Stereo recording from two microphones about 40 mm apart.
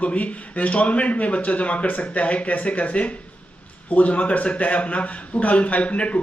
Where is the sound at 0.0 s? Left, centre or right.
Left.